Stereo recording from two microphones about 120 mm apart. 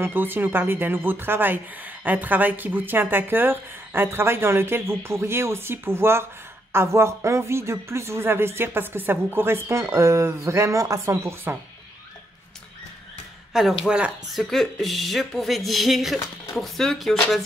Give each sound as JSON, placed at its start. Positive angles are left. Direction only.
{"t": 0.0, "sound": "speech", "side_deg": -15}
{"t": 13.5, "sound": "speech", "side_deg": -5}
{"t": 14.4, "sound": "speech", "side_deg": 0}